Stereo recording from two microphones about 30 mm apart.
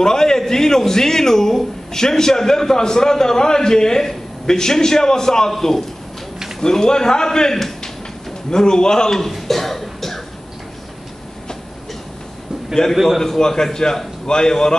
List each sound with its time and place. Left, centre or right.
0.0 s a sound: centre
0.5 s a man's voice: centre
9.3 s cough: centre
13.2 s a man's voice: centre